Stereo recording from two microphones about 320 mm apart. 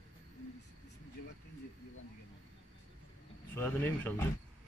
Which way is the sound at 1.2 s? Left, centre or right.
Left.